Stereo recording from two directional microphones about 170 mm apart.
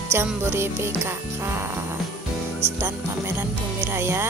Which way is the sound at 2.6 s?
15° right (ahead or behind).